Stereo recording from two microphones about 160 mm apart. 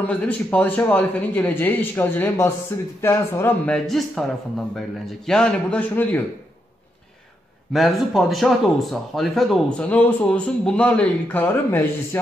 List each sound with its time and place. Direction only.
0.0 s a man's voice: 5° left (ahead or behind)
3.7 s speech: 5° left (ahead or behind)
7.7 s speech: centre (ahead or behind)